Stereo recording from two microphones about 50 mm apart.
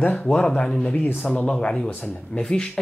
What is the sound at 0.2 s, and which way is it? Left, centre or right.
Speech, left.